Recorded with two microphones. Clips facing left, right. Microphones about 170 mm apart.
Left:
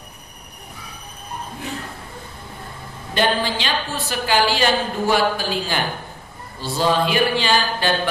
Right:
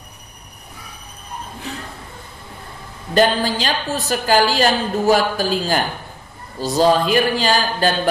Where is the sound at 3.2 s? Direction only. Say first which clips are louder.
Right 4 dB; 40° right (ahead or behind).